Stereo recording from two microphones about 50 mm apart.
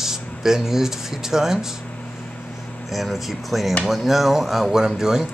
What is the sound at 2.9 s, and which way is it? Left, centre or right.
Speech, centre.